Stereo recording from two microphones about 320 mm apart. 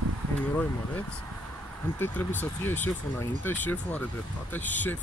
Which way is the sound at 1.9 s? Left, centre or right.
Centre.